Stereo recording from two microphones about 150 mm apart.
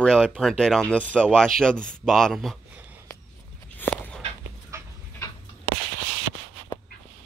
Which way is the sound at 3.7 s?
10° left (ahead or behind).